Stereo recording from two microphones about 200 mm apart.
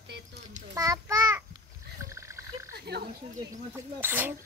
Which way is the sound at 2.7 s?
55° right (ahead or behind).